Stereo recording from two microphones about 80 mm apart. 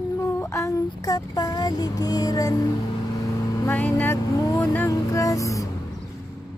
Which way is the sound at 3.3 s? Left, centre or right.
Left.